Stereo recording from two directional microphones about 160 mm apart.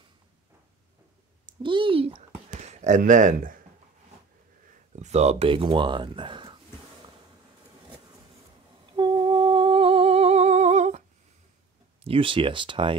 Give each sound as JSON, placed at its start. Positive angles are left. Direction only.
{"t": 1.4, "sound": "speech", "side_deg": -30}
{"t": 2.5, "sound": "speech", "side_deg": -45}
{"t": 4.9, "sound": "speech", "side_deg": -45}
{"t": 8.9, "sound": "humming", "side_deg": -30}
{"t": 12.0, "sound": "speech", "side_deg": -35}